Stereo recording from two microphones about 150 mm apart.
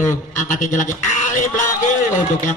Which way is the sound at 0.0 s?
55° left (ahead or behind).